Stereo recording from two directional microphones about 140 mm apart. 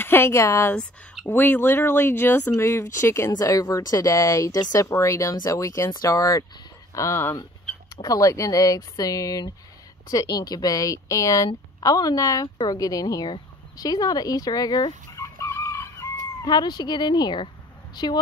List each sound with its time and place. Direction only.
0.0 s a woman's voice: 15° left (ahead or behind)